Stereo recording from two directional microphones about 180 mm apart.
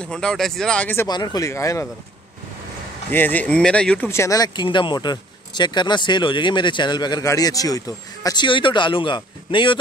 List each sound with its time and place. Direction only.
0.0 s speech: 5° left (ahead or behind)
1.0 s speech: 20° left (ahead or behind)
3.1 s speech: 10° left (ahead or behind); by 9.8 s 25° left (ahead or behind)